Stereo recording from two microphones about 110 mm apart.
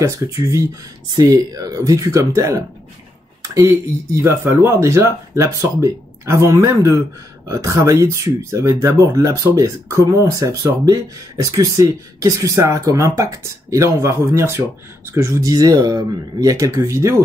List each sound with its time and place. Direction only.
1.1 s speech: 35° right (ahead or behind)